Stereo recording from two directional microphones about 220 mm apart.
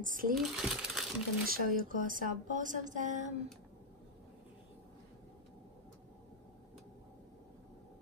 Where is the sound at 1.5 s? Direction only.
40° right (ahead or behind).